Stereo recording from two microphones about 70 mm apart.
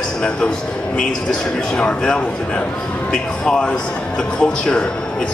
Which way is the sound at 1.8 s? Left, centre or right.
Centre.